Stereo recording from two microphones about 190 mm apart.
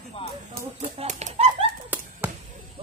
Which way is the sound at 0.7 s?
35° right (ahead or behind).